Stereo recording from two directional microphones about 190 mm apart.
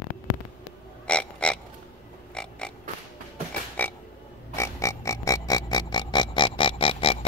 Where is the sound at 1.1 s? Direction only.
5° left (ahead or behind).